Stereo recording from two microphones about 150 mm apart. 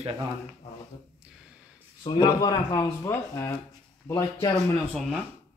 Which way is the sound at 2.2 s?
25° left (ahead or behind).